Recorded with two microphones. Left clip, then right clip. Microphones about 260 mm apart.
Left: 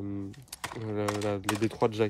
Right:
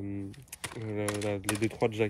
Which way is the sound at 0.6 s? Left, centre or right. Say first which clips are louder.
Left 2 dB; left.